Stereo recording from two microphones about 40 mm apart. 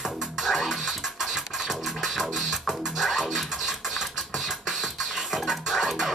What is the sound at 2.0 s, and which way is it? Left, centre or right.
Music, centre.